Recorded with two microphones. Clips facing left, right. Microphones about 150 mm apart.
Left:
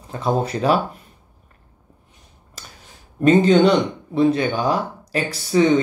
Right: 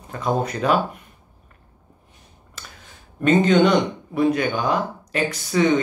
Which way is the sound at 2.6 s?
40° left (ahead or behind).